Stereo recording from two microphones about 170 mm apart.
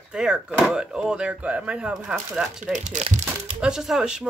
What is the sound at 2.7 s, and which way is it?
Crumpling, 45° right (ahead or behind).